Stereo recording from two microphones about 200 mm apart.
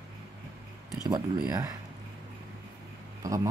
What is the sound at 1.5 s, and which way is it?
Speech, 15° right (ahead or behind).